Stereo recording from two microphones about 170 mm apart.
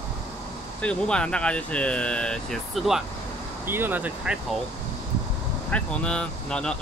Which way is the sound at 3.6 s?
10° right (ahead or behind).